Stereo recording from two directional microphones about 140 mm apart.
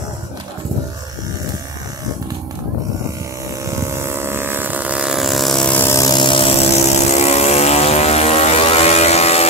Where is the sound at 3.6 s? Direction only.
20° right (ahead or behind); by 6.5 s 35° left (ahead or behind).